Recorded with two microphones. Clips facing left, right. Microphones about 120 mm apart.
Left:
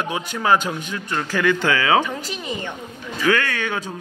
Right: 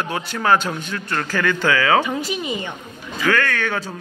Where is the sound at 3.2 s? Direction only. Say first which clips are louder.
Even; 15° left (ahead or behind).